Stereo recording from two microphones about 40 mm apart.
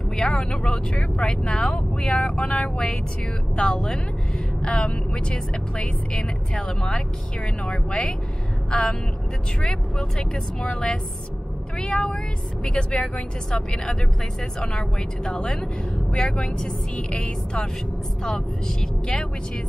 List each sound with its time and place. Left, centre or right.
0.3 s speech: left; by 2.3 s centre
2.3 s speech: left
3.5 s speech: centre
9.6 s speech: centre